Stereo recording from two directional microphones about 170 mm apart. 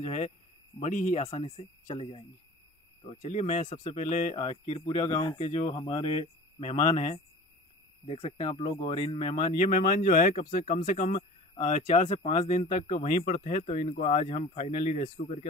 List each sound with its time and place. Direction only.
0.0 s speech: 40° left (ahead or behind); by 5.3 s 20° left (ahead or behind)
5.4 s speech: 35° left (ahead or behind)